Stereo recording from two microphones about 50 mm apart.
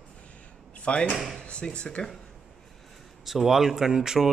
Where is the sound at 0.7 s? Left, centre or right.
Left.